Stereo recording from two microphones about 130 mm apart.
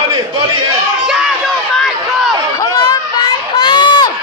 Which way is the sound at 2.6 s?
30° left (ahead or behind).